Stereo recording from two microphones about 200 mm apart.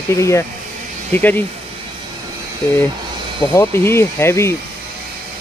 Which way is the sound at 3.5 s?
15° left (ahead or behind).